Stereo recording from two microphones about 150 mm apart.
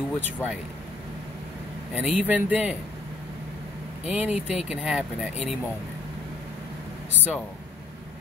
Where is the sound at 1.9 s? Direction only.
10° right (ahead or behind).